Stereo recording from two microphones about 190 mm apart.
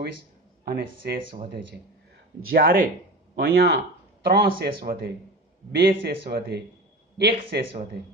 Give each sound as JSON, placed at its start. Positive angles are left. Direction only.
{"t": 0.7, "sound": "a man's voice", "side_deg": -55}
{"t": 2.5, "sound": "a man's voice", "side_deg": -50}